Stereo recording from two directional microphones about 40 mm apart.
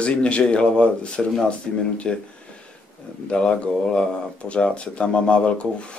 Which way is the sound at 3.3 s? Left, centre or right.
Left.